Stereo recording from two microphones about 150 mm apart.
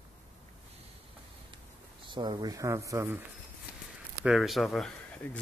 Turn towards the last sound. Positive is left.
turn(degrees=0)  # may be behind; listen again after turning